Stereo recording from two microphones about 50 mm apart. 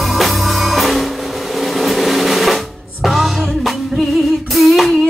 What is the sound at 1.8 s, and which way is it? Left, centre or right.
Drum, centre.